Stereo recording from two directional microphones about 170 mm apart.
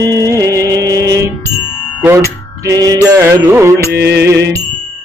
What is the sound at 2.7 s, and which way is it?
Mantra, 20° right (ahead or behind).